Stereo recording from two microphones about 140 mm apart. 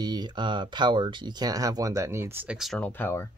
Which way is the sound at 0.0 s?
30° right (ahead or behind).